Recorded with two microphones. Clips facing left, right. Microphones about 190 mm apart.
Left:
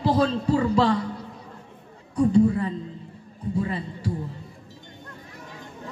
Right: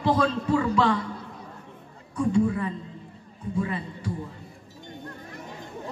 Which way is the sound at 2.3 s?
35° left (ahead or behind).